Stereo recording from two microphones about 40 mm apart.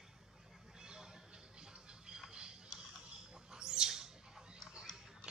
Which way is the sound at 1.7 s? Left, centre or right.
Right.